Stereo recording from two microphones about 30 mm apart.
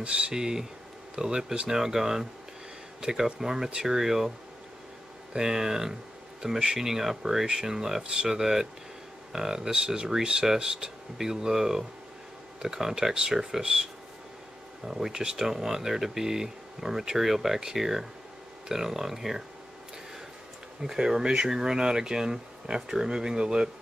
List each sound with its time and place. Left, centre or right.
0.0 s speech: right
0.3 s speech: right
1.7 s speech: centre
5.3 s speech: right
9.7 s speech: right
14.9 s speech: centre
20.8 s speech: centre